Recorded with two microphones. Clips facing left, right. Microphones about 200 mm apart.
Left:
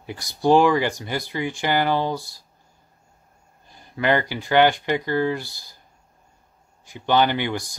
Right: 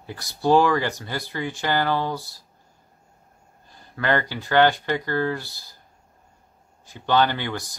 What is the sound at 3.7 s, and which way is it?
Speech, 15° left (ahead or behind).